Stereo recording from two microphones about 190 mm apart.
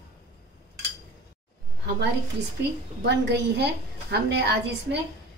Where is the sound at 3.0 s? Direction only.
65° right (ahead or behind).